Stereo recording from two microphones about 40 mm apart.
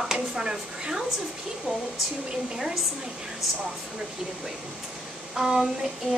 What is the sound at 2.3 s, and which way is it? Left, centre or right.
Speech, centre.